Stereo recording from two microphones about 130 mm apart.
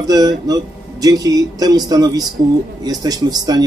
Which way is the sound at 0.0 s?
30° right (ahead or behind).